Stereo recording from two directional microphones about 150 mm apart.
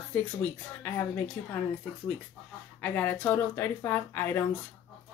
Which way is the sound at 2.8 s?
15° left (ahead or behind).